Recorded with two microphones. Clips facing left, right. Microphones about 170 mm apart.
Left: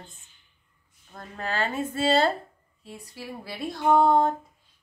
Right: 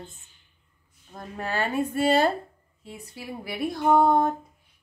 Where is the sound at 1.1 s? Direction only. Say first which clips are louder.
Right 1 dB; 15° right (ahead or behind).